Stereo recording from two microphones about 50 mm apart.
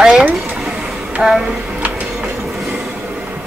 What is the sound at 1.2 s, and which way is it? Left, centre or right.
Speech, centre.